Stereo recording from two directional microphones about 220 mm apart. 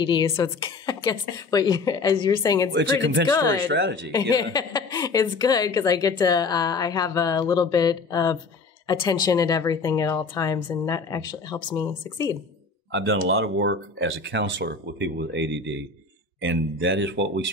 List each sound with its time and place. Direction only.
0.0 s a woman's voice: 20° left (ahead or behind)
2.7 s speech: 55° right (ahead or behind)
3.3 s a woman's voice: 15° left (ahead or behind)
3.6 s speech: 55° right (ahead or behind)
4.1 s a woman's voice: 20° left (ahead or behind)
12.9 s speech: 60° right (ahead or behind)